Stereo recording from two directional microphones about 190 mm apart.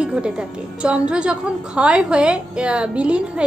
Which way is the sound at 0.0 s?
5° right (ahead or behind).